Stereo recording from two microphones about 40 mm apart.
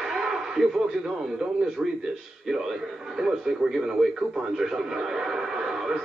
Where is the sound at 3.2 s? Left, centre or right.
Centre.